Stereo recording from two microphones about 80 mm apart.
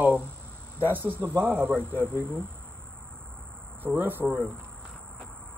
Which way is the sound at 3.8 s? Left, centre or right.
Right.